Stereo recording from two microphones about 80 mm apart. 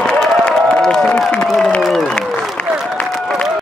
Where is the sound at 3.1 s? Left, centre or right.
Centre.